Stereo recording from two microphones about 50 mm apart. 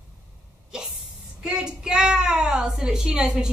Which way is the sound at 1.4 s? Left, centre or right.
Centre.